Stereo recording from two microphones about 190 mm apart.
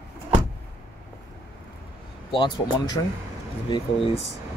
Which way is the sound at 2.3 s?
25° left (ahead or behind).